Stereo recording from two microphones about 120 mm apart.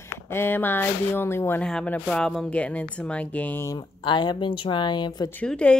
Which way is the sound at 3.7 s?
40° left (ahead or behind).